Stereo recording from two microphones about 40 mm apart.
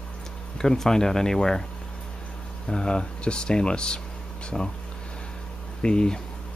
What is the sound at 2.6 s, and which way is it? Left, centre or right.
Speech, left.